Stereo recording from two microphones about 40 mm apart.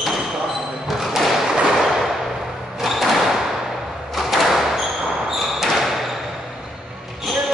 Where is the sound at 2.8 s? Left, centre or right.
Centre.